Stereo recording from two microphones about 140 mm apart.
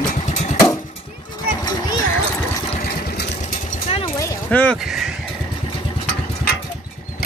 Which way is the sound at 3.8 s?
45° left (ahead or behind).